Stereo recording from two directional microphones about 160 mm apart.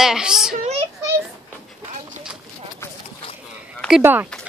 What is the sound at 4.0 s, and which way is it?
Speech, 10° right (ahead or behind).